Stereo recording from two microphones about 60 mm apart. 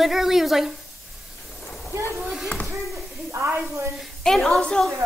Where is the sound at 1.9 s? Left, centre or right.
Right.